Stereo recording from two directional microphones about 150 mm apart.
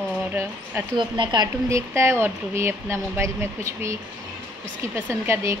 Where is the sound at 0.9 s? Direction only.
30° right (ahead or behind).